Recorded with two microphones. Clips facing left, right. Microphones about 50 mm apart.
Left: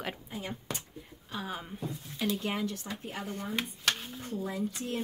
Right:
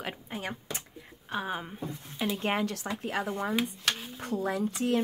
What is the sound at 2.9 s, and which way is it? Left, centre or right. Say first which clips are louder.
Speech: right 7 dB; right.